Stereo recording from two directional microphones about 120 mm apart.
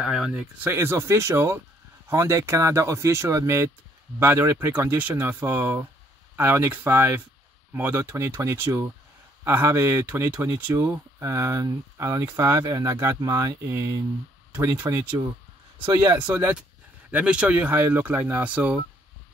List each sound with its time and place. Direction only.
0.0 s speech: 5° right (ahead or behind); by 16.2 s 35° right (ahead or behind)
16.2 s speech: 15° right (ahead or behind)